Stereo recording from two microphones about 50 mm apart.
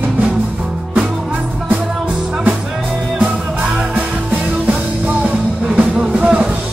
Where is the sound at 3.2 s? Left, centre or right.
Right.